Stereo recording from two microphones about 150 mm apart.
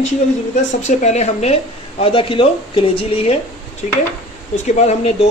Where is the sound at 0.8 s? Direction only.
50° left (ahead or behind).